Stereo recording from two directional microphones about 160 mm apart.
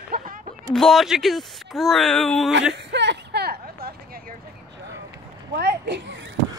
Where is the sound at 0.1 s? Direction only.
60° right (ahead or behind).